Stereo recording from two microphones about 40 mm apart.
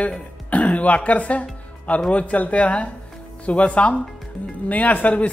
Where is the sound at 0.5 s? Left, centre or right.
Left.